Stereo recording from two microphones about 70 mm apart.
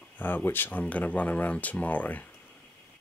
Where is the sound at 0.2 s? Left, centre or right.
Left.